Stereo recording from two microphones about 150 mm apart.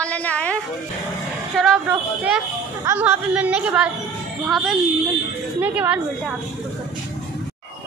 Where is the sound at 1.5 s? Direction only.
5° right (ahead or behind).